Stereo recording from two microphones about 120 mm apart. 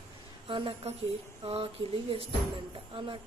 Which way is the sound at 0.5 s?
45° right (ahead or behind).